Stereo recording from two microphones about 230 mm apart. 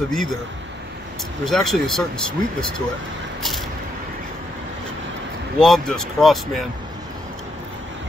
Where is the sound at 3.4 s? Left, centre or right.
Centre.